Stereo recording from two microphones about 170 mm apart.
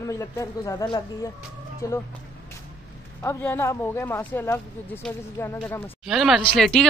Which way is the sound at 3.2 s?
15° left (ahead or behind).